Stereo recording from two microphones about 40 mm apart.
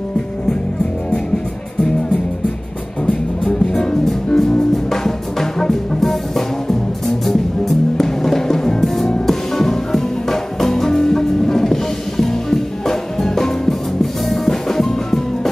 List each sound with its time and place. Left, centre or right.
3.1 s music: centre